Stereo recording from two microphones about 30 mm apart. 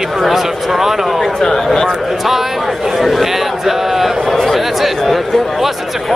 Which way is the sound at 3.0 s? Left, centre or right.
Centre.